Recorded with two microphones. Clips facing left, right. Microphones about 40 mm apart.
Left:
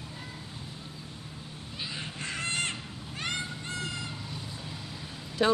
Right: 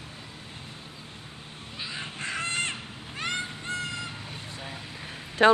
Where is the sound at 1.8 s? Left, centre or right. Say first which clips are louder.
Right 2 dB; centre.